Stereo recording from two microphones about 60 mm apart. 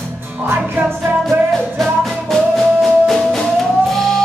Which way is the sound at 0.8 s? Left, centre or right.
Right.